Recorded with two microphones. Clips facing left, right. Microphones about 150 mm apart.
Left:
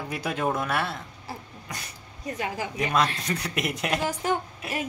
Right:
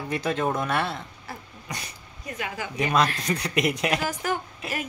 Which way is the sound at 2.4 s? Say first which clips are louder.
Left 2 dB; 30° left (ahead or behind).